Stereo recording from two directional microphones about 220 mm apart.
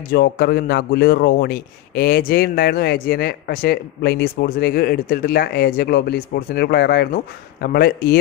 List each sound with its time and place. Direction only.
0.1 s a man's voice: 45° left (ahead or behind)